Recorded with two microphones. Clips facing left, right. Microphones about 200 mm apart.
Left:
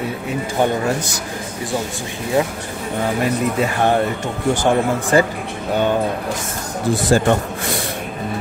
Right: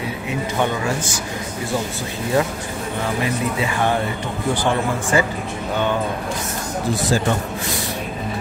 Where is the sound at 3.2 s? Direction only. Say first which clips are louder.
Left 4 dB; 45° left (ahead or behind).